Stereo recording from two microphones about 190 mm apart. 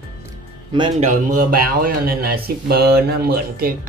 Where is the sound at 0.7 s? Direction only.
30° right (ahead or behind).